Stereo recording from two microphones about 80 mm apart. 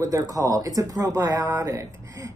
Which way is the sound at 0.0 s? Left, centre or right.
Right.